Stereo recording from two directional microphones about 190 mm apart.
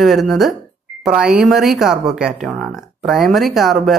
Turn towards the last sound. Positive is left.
turn(degrees=0)  # may be behind; listen again after turning